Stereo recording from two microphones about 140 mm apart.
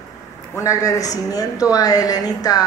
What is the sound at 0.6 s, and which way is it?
Speech, 25° left (ahead or behind).